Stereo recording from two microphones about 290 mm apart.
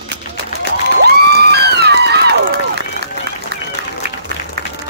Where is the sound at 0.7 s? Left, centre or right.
Right.